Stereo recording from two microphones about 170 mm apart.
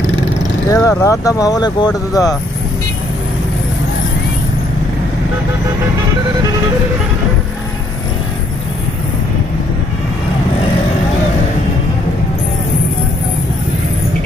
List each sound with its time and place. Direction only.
0.7 s speech: 20° left (ahead or behind)